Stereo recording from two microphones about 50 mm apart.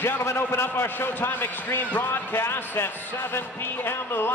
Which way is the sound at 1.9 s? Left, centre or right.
Left.